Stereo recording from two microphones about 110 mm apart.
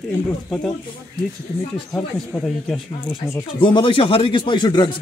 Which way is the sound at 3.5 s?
50° left (ahead or behind).